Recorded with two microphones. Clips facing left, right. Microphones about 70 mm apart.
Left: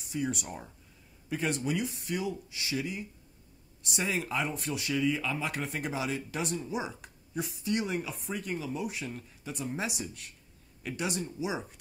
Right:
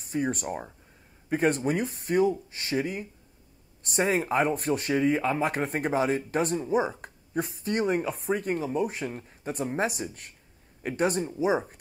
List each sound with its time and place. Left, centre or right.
0.1 s speech: right